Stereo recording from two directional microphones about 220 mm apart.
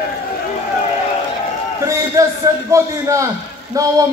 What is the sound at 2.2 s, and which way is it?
A man's voice, 15° right (ahead or behind).